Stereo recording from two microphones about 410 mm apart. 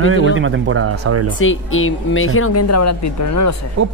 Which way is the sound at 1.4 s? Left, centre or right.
Left.